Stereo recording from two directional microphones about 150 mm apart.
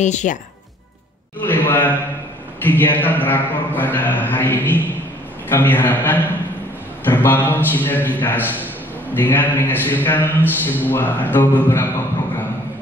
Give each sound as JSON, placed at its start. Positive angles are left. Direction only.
{"t": 0.0, "sound": "speech", "side_deg": 50}
{"t": 1.4, "sound": "a man's voice", "side_deg": 10}